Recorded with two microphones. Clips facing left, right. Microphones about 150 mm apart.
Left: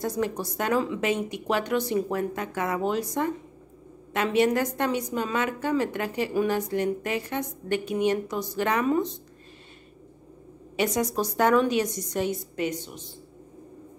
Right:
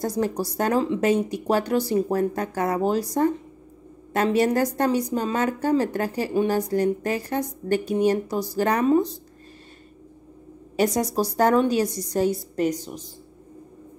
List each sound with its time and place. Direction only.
0.0 s a woman's voice: 35° right (ahead or behind)
10.8 s a woman's voice: 35° right (ahead or behind)